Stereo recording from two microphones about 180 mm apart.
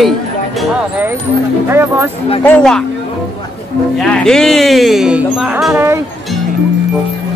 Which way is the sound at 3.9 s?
5° left (ahead or behind).